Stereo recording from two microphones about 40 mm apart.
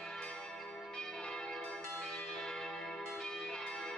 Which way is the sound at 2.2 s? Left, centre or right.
Centre.